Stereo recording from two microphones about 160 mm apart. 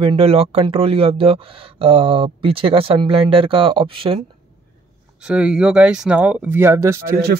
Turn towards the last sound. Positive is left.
turn(degrees=-15)  # may be behind; listen again after turning